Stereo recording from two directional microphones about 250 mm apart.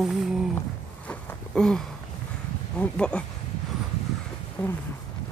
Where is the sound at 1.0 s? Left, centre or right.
Centre.